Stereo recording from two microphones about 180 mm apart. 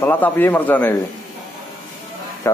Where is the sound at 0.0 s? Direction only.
10° left (ahead or behind).